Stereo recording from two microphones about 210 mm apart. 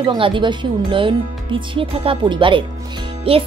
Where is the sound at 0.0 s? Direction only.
20° right (ahead or behind).